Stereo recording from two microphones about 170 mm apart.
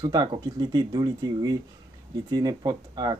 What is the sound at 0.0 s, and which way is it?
Speech, 25° right (ahead or behind).